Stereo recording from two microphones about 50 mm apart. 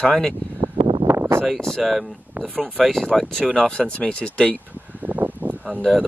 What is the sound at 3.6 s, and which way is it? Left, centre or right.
Speech, centre.